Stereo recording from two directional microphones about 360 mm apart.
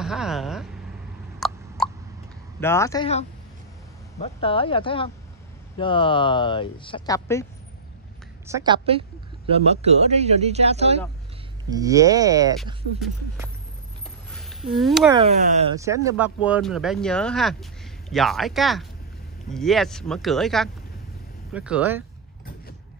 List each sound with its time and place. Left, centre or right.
0.0 s speech: centre
1.4 s a sound: centre
1.8 s hiccup: centre
2.6 s speech: centre
8.5 s speech: centre
14.3 s speech: centre
15.1 s speech: centre